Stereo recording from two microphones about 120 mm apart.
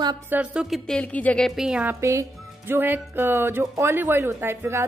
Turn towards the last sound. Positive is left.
turn(degrees=-20)  # may be behind; listen again after turning